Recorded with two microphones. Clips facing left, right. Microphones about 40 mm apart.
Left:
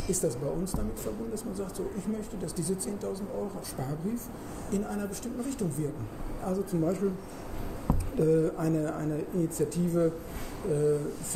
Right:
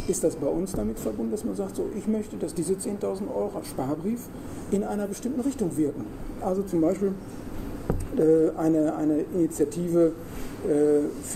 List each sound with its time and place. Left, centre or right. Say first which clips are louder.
0.1 s speech: right 6 dB; right
8.2 s speech: right 6 dB; right